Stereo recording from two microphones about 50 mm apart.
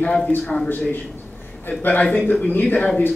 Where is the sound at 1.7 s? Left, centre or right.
Left.